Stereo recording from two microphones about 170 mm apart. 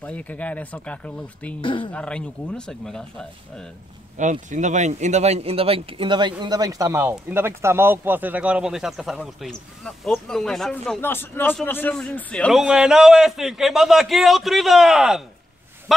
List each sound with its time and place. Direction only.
0.0 s speech: 10° left (ahead or behind)
1.6 s speech: 30° left (ahead or behind)
1.9 s a man's voice: 5° left (ahead or behind)
4.2 s speech: 45° right (ahead or behind); by 11.0 s centre (ahead or behind)
11.0 s a man's voice: 10° left (ahead or behind); by 15.2 s 5° right (ahead or behind)